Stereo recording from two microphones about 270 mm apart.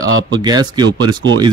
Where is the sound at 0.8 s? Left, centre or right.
Right.